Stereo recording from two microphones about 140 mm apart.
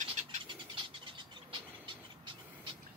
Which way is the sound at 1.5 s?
35° right (ahead or behind).